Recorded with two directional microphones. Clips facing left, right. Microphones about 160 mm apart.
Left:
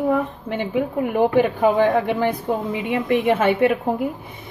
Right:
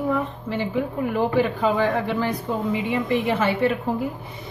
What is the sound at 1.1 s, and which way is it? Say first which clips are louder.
Speech: left 4 dB; 60° left (ahead or behind).